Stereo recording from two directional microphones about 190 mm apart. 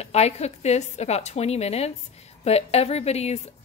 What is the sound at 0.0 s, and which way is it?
A woman's voice, 35° left (ahead or behind).